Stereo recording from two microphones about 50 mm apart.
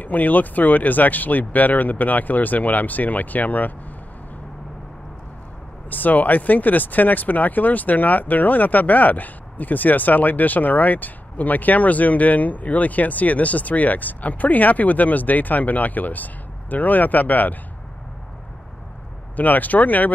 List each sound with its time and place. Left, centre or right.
0.0 s speech: left
5.9 s speech: left
19.3 s speech: left